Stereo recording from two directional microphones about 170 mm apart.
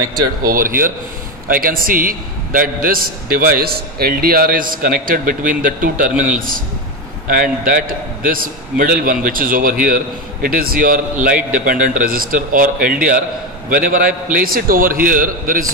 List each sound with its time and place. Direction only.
0.4 s a man's voice: 55° right (ahead or behind)